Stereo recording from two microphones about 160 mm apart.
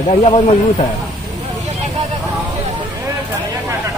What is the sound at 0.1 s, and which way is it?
Speech, 40° left (ahead or behind).